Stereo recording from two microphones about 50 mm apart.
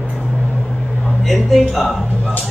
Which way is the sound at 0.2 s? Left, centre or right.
Left.